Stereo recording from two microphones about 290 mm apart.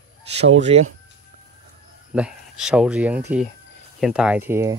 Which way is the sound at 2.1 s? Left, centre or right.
Centre.